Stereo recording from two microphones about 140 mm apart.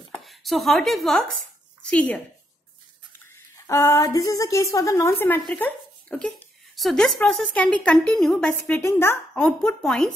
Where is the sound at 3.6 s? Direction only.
20° left (ahead or behind).